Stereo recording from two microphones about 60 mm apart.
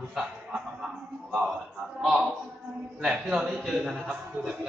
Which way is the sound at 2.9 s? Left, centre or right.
Centre.